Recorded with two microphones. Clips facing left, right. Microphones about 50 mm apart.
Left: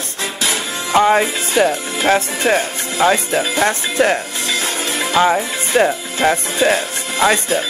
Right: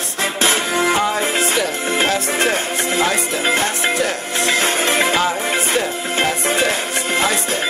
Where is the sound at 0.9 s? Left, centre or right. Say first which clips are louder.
Left 6 dB; left.